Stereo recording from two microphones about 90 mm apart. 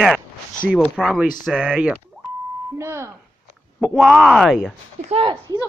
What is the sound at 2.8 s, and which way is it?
Speech, 30° right (ahead or behind).